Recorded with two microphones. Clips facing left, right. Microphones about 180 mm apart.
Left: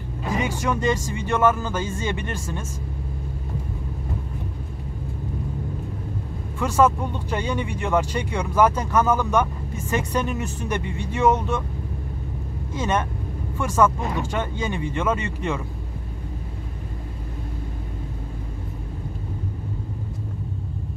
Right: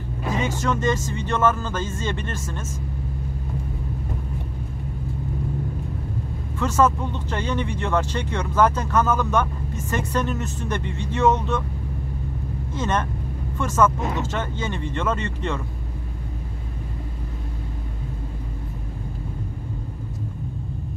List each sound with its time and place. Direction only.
0.4 s speech: 10° left (ahead or behind)
6.6 s speech: 10° left (ahead or behind)
12.7 s speech: 10° left (ahead or behind)